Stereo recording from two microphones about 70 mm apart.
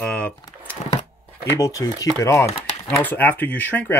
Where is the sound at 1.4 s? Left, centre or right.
Left.